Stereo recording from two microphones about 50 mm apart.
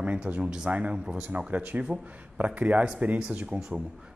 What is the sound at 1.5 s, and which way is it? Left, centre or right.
A man's voice, right.